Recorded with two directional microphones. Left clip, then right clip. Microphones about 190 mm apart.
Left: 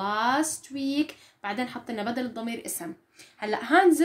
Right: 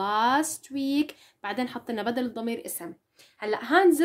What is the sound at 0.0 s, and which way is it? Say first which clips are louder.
Speech: right 2 dB; 45° right (ahead or behind).